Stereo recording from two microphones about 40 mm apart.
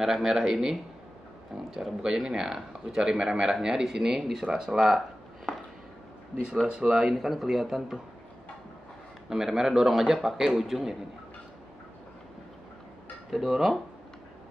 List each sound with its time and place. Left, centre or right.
0.0 s speech: centre
6.7 s speech: right
7.2 s speech: centre
9.3 s speech: centre
13.3 s speech: centre